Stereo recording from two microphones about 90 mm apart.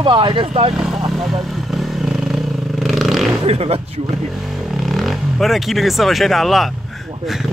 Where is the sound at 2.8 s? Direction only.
Centre (ahead or behind).